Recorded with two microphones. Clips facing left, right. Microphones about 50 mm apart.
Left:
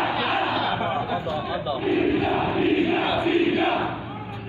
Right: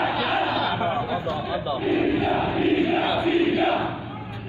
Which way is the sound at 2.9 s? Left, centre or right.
Centre.